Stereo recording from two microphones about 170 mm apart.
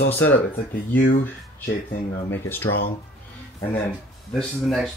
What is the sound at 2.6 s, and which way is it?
Speech, 70° left (ahead or behind).